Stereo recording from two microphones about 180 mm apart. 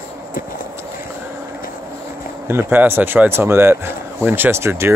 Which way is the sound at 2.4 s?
10° right (ahead or behind).